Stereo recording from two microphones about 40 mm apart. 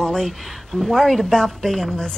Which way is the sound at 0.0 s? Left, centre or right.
Centre.